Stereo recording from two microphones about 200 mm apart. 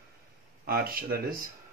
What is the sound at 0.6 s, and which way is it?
Speech, 50° right (ahead or behind).